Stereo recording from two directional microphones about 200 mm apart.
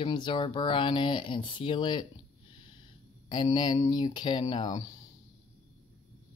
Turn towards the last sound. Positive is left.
turn(degrees=20)  # may be behind; listen again after turning